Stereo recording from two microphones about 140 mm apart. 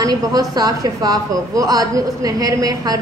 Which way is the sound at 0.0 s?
25° right (ahead or behind).